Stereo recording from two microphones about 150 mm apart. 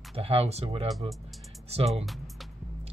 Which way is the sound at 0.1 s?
40° right (ahead or behind).